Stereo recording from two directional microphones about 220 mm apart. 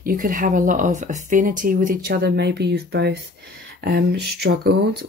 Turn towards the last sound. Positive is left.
turn(degrees=-45)  # may be behind; listen again after turning